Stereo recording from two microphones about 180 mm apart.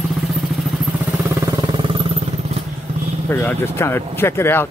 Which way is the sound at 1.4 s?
25° right (ahead or behind).